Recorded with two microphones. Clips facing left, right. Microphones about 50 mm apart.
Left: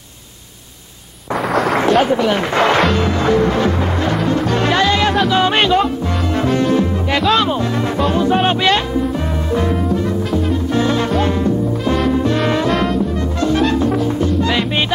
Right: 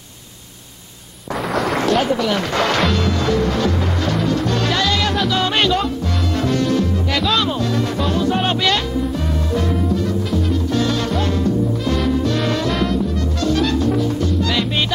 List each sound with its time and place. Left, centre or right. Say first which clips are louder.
1.5 s a sound: left 4 dB; centre
1.8 s speech: left 4 dB; centre
2.9 s music: left 3 dB; left
12.7 s music: left 3 dB; centre
13.4 s music: left 3 dB; left